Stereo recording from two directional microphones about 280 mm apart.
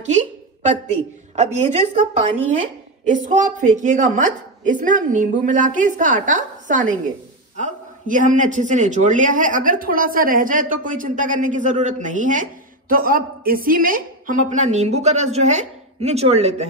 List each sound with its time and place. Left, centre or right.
0.1 s a sound: right
1.3 s a man's voice: right
3.1 s a man's voice: right